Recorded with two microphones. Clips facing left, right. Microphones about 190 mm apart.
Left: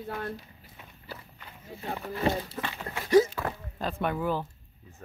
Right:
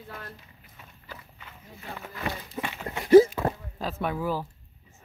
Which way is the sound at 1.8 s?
35° left (ahead or behind).